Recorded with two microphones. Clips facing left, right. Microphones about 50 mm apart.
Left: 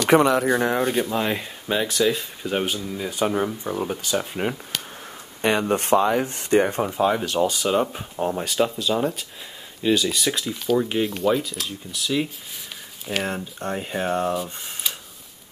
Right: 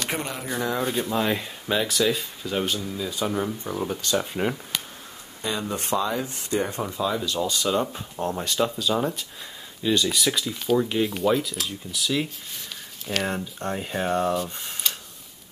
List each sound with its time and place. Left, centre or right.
0.1 s speech: left
0.8 s speech: centre
2.4 s speech: left
3.0 s speech: left
3.4 s speech: centre
4.0 s speech: centre
5.4 s speech: left
7.5 s speech: centre